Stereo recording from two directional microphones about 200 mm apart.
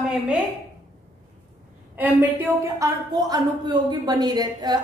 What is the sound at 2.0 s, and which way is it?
A woman's voice, 10° right (ahead or behind).